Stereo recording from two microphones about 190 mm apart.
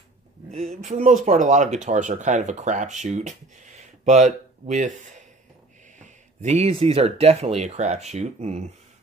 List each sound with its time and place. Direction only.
0.5 s speech: 35° right (ahead or behind)
5.9 s a sound: 40° right (ahead or behind)
6.8 s speech: 35° right (ahead or behind)